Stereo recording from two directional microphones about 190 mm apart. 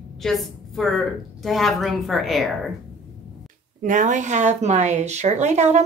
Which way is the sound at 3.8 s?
40° right (ahead or behind).